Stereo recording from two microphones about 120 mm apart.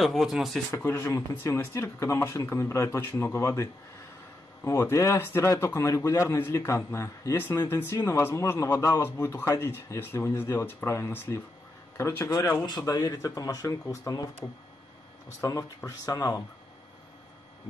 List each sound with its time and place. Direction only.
0.0 s speech: centre (ahead or behind)
0.7 s a man's voice: 20° left (ahead or behind)
4.6 s a man's voice: 20° left (ahead or behind)
12.6 s a man's voice: 35° left (ahead or behind)